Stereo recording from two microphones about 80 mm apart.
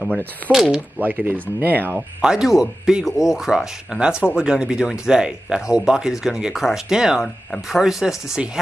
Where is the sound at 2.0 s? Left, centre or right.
Centre.